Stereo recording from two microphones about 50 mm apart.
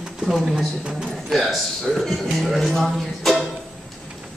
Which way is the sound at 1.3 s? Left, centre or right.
Centre.